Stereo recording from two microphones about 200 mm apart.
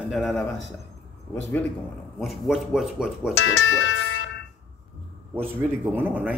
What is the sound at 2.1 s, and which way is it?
Speech, centre (ahead or behind).